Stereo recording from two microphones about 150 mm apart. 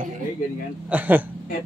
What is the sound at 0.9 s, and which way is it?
Speech, 10° right (ahead or behind).